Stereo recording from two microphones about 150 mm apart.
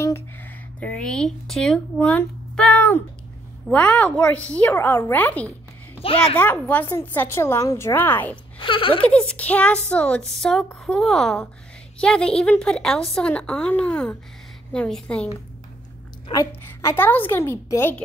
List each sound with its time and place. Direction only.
0.0 s a woman's voice: 15° left (ahead or behind)
8.5 s speech: 35° left (ahead or behind)
9.0 s a woman's voice: 10° left (ahead or behind)
16.6 s a woman's voice: 15° left (ahead or behind)